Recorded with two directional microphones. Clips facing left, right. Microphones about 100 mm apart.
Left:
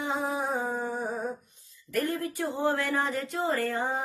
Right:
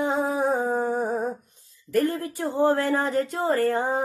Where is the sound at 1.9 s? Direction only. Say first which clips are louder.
Right 6 dB; 35° right (ahead or behind).